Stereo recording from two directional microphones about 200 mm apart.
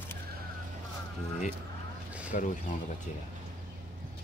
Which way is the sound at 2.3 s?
40° left (ahead or behind).